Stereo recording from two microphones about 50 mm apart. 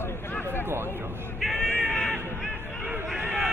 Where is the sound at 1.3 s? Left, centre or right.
Centre.